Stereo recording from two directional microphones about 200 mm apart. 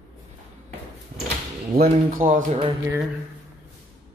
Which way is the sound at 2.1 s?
40° right (ahead or behind).